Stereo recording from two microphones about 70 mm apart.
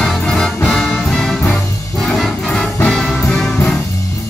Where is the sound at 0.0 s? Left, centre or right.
Centre.